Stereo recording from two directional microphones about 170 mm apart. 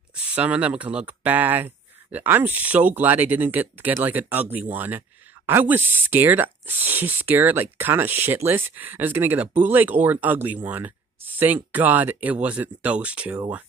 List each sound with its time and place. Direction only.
0.1 s speech: 5° right (ahead or behind)